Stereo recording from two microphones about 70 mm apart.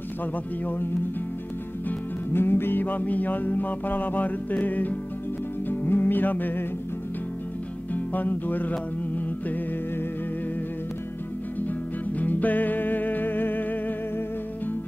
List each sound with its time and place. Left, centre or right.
1.9 s music: left
7.9 s music: left
12.2 s music: left